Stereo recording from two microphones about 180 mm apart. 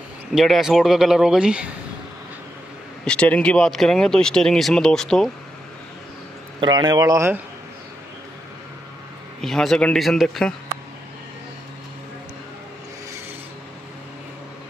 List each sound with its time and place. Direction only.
0.3 s speech: centre (ahead or behind)
3.1 s speech: 5° left (ahead or behind)
6.6 s a man's voice: 25° right (ahead or behind)
9.4 s speech: centre (ahead or behind)